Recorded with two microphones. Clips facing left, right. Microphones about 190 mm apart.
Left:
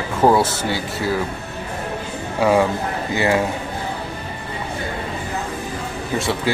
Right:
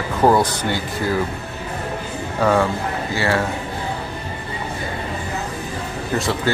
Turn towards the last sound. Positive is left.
turn(degrees=0)  # may be behind; listen again after turning